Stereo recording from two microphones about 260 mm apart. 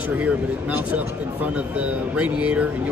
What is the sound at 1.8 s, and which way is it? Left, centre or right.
Speech, centre.